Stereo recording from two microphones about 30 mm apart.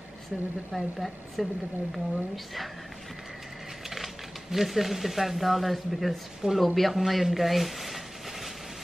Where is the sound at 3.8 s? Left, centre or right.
Centre.